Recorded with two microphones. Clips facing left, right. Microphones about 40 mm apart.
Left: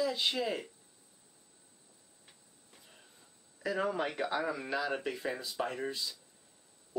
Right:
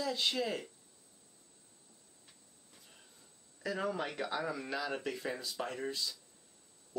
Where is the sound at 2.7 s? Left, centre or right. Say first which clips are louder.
Left 2 dB; centre.